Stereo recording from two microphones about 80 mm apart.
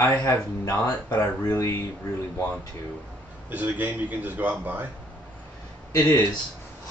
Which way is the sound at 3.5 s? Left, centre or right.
Right.